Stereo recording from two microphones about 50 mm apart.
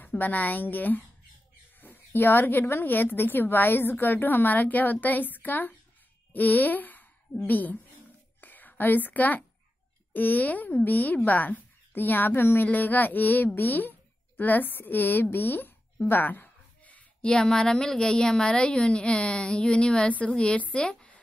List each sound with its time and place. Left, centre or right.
0.0 s a woman's voice: left
8.4 s a sound: left
10.1 s a woman's voice: left
17.2 s a woman's voice: centre